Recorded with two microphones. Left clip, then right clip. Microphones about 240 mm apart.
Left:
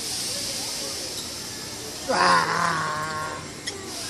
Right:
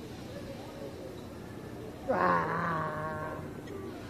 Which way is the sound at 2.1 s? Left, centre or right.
Left.